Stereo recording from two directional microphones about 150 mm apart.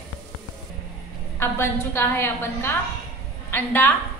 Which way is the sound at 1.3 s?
15° left (ahead or behind).